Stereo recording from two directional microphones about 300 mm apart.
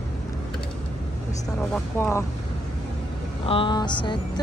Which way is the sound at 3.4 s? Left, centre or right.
Centre.